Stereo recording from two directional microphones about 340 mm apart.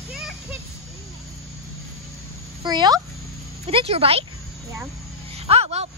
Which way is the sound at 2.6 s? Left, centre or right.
Centre.